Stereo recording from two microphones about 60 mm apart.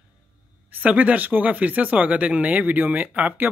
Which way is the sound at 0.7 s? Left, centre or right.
Right.